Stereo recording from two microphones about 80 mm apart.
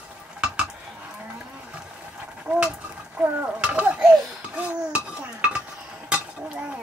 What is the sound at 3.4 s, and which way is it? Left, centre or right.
Laughter, centre.